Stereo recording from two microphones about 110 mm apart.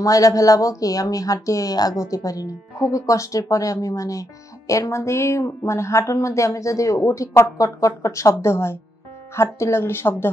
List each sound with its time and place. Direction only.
0.0 s speech: 30° left (ahead or behind)